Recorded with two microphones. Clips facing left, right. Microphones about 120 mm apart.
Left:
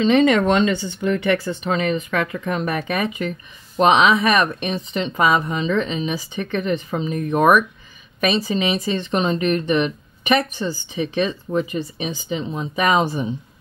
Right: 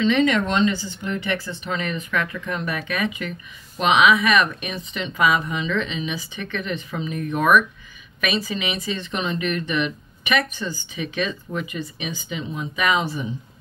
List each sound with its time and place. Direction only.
0.0 s speech: 40° left (ahead or behind)
0.7 s speech: 60° left (ahead or behind); by 13.3 s 40° left (ahead or behind)